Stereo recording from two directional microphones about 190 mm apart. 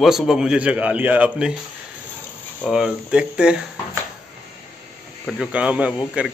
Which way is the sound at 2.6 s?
5° right (ahead or behind).